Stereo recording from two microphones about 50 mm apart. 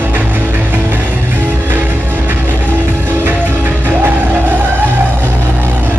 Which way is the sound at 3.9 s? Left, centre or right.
Right.